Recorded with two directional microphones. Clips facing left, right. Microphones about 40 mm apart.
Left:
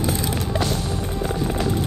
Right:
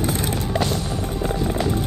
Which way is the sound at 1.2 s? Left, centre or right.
Right.